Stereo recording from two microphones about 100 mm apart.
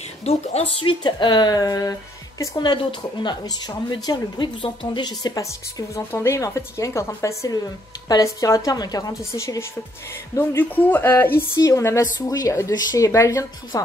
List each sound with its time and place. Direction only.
0.2 s a woman's voice: 90° left
1.0 s a woman's voice: 50° left (ahead or behind)
9.2 s a woman's voice: 30° left (ahead or behind)